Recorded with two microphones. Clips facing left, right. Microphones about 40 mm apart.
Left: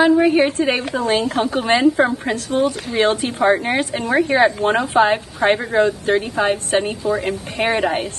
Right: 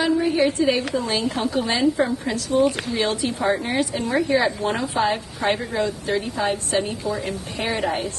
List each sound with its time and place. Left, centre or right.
0.0 s a woman's voice: left
7.8 s a woman's voice: left